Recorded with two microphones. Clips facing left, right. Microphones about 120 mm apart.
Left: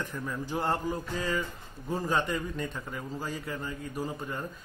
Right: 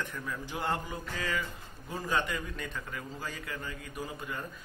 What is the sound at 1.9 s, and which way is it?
A man's voice, 35° left (ahead or behind).